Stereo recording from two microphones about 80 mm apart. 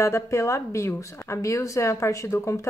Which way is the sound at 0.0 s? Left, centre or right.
Left.